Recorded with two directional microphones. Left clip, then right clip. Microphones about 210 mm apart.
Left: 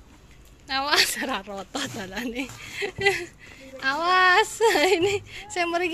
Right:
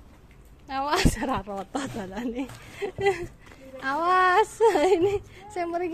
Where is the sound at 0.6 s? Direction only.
10° right (ahead or behind).